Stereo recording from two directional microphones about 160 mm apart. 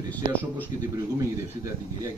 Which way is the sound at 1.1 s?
20° right (ahead or behind).